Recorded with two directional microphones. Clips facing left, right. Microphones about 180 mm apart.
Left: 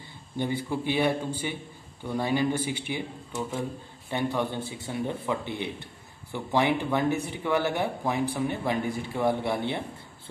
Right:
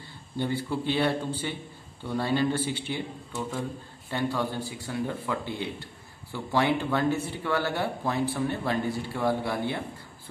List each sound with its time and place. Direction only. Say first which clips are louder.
0.4 s speech: even; 15° left (ahead or behind)